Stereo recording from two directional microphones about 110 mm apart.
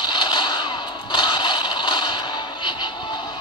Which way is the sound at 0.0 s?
45° left (ahead or behind).